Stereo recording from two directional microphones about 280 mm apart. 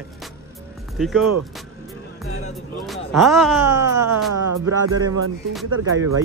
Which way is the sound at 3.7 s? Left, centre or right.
Centre.